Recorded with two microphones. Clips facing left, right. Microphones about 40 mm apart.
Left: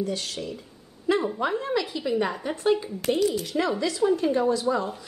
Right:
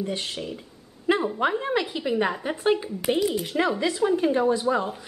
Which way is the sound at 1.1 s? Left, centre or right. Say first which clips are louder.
Right 1 dB; right.